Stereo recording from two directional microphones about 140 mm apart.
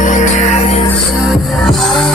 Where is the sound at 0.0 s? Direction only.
60° left (ahead or behind).